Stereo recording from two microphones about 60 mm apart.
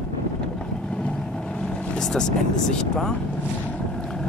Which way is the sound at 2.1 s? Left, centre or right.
Centre.